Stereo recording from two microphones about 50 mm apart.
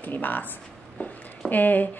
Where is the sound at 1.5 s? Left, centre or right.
Left.